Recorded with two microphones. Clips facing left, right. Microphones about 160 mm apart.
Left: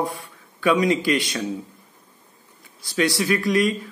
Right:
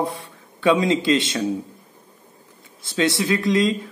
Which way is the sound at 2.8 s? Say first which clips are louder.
Right 1 dB; 25° right (ahead or behind).